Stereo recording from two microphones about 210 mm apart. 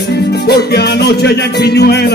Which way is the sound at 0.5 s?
50° left (ahead or behind).